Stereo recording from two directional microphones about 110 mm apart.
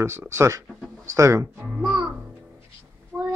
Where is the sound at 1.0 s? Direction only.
25° right (ahead or behind).